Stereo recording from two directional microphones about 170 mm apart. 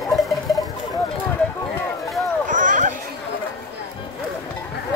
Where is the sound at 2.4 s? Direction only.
50° right (ahead or behind).